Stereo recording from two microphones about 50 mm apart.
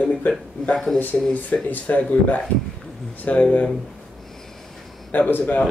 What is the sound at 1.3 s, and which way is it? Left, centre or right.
Speech, left.